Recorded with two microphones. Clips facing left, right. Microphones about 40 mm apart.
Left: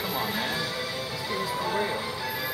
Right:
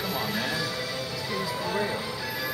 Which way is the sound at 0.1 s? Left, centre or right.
Centre.